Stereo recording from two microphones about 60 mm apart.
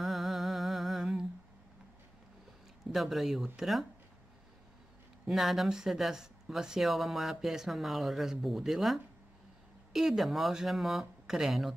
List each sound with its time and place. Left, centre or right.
0.0 s music: centre
2.8 s speech: centre
5.3 s speech: centre